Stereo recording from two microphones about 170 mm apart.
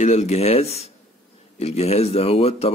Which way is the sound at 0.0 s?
40° left (ahead or behind).